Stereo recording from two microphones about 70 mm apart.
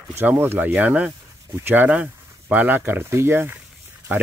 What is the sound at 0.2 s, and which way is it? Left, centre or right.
Speech, right.